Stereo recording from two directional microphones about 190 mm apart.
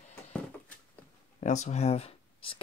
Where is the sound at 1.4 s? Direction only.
40° left (ahead or behind).